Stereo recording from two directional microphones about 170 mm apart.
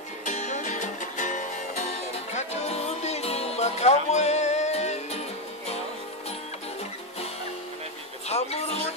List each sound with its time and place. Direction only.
0.2 s music: 45° left (ahead or behind)
8.3 s music: 40° left (ahead or behind)